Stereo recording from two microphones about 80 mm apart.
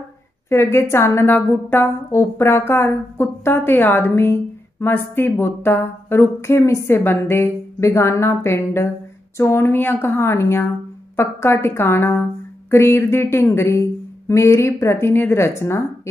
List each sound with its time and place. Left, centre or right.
0.5 s a woman's voice: left